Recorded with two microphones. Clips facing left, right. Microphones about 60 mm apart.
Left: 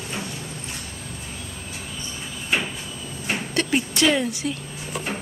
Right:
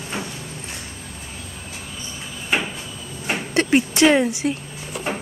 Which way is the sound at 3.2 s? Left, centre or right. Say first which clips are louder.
Right 4 dB; right.